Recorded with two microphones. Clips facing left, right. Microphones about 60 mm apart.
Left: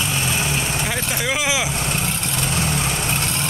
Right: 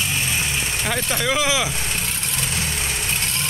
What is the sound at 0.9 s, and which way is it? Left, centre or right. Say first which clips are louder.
Speech: right 1 dB; centre.